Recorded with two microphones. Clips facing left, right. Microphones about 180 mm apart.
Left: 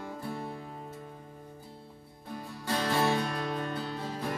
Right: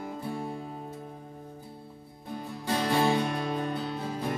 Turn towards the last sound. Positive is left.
turn(degrees=-15)  # may be behind; listen again after turning